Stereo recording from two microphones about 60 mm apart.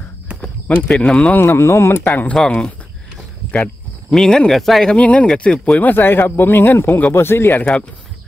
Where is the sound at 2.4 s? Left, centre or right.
Centre.